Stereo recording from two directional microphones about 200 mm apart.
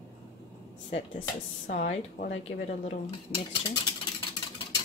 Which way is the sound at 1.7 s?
40° left (ahead or behind).